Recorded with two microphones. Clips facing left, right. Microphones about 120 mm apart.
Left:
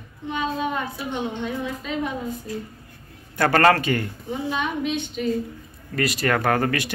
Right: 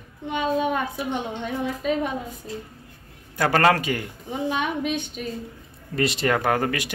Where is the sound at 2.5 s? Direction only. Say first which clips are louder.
Even; 25° right (ahead or behind).